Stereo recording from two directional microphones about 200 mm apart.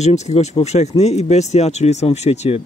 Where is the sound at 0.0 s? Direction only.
35° left (ahead or behind).